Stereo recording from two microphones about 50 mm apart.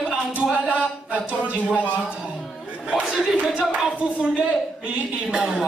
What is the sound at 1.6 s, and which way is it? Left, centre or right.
Speech, left.